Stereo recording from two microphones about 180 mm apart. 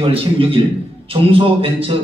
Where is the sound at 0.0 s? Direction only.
30° right (ahead or behind).